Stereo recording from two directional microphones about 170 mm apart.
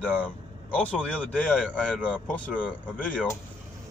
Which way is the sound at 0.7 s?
5° left (ahead or behind).